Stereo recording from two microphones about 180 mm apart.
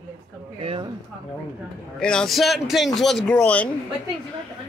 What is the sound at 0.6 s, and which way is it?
Speech, 30° right (ahead or behind).